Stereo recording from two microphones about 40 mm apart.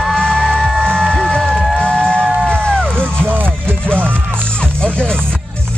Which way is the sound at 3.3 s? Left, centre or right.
Right.